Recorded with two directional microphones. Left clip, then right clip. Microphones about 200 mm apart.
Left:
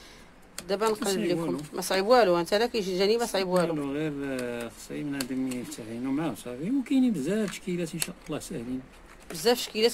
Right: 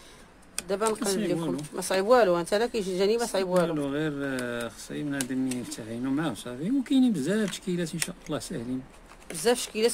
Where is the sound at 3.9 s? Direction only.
40° right (ahead or behind).